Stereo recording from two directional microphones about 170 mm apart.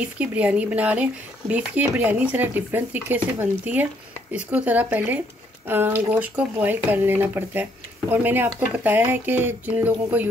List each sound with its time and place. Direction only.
0.0 s speech: 10° right (ahead or behind)